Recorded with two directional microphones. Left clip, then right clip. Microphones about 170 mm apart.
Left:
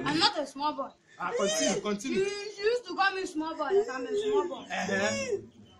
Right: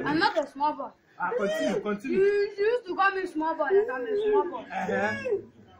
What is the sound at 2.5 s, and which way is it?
A woman's voice, 50° left (ahead or behind).